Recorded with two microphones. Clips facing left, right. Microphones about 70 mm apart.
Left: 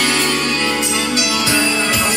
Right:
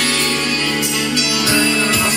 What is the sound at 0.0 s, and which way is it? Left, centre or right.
Music, left.